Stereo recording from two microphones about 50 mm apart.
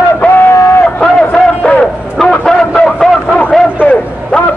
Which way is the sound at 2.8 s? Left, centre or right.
Centre.